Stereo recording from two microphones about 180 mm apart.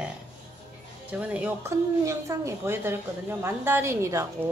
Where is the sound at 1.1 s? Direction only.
5° right (ahead or behind).